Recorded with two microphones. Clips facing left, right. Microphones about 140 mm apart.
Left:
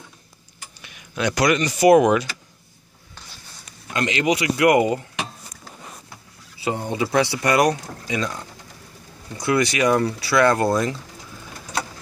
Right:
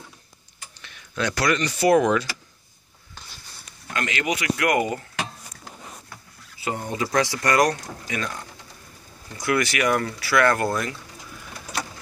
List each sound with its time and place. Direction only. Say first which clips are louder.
0.7 s speech: left 1 dB; 10° left (ahead or behind)
3.8 s speech: left 5 dB; 20° left (ahead or behind)
6.6 s speech: left 3 dB; 20° left (ahead or behind)
7.1 s speech: left 2 dB; 10° left (ahead or behind)
9.5 s speech: left 3 dB; 25° left (ahead or behind)